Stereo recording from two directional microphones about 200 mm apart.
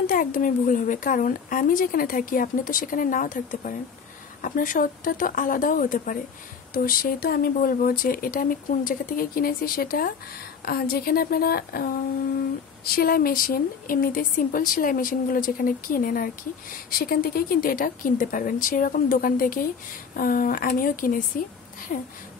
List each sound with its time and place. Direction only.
0.0 s a woman's voice: 45° left (ahead or behind)